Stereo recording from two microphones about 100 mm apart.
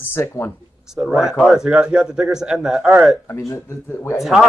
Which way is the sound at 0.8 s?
5° right (ahead or behind).